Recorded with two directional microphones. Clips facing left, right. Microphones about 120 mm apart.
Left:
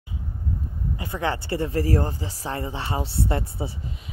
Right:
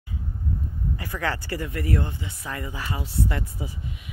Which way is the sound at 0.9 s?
20° left (ahead or behind).